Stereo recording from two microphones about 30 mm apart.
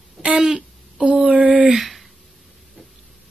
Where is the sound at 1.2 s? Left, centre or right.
Right.